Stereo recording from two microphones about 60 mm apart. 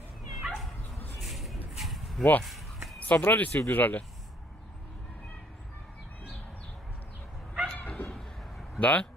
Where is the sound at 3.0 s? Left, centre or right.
Left.